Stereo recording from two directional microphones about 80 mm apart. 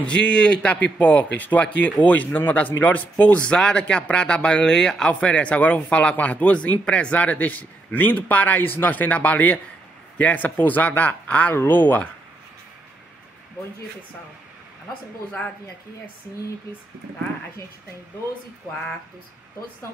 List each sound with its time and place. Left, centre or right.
0.0 s speech: centre